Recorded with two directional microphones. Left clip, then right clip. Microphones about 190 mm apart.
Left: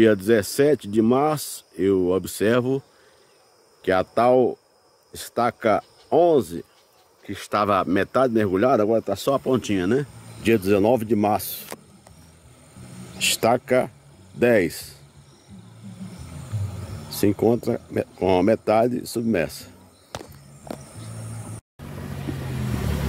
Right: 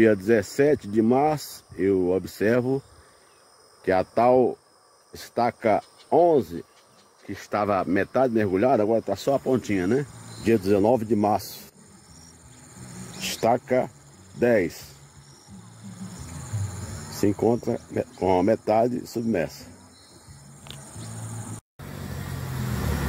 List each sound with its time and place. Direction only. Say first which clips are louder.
0.0 s speech: left 2 dB; 10° left (ahead or behind)
3.8 s speech: left 1 dB; 5° left (ahead or behind)
13.2 s speech: left 3 dB; 15° left (ahead or behind)
17.2 s speech: left 2 dB; 15° left (ahead or behind)